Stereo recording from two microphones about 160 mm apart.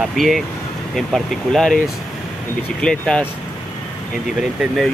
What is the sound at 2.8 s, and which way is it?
Speech, 5° left (ahead or behind).